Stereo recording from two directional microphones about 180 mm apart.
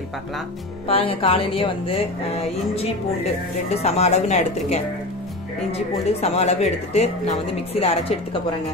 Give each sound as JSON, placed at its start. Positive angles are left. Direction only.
{"t": 0.8, "sound": "speech", "side_deg": 30}
{"t": 3.7, "sound": "speech", "side_deg": 35}
{"t": 6.2, "sound": "speech", "side_deg": 35}